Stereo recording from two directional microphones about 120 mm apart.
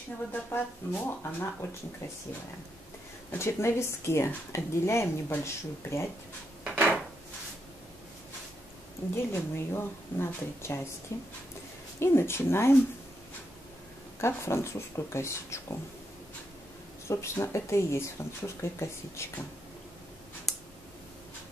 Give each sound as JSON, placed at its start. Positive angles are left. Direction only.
{"t": 0.3, "sound": "speech", "side_deg": 15}
{"t": 3.3, "sound": "a woman's voice", "side_deg": 20}
{"t": 6.6, "sound": "drawer open or close", "side_deg": -15}
{"t": 9.1, "sound": "a woman's voice", "side_deg": 20}
{"t": 14.2, "sound": "a woman's voice", "side_deg": 20}
{"t": 17.1, "sound": "a woman's voice", "side_deg": 25}
{"t": 20.5, "sound": "a sound", "side_deg": 0}